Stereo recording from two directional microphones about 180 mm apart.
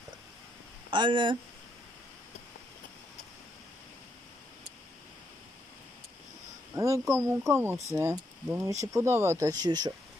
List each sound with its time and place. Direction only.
0.8 s speech: 25° right (ahead or behind)
6.7 s speech: 15° right (ahead or behind)